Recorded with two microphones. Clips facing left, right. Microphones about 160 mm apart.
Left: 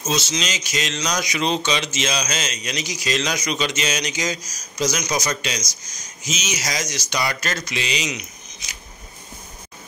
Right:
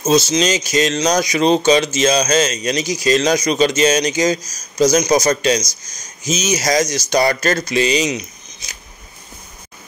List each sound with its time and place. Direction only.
0.0 s speech: 40° right (ahead or behind)